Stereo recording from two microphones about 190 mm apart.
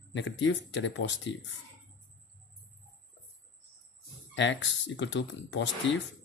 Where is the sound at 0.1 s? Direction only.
75° left (ahead or behind).